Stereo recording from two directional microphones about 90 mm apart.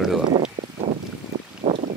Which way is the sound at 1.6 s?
90° right.